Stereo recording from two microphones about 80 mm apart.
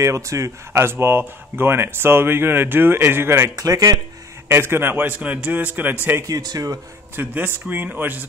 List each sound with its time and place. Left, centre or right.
0.0 s speech: right
3.5 s speech: right
4.5 s a man's voice: right
6.2 s speech: right
7.2 s a man's voice: right